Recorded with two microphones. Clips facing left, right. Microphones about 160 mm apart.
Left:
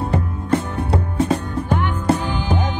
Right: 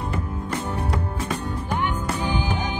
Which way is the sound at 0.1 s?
30° left (ahead or behind).